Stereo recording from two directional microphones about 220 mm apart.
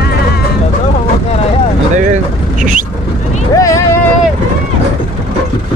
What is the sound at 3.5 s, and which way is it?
Vehicle, 15° left (ahead or behind).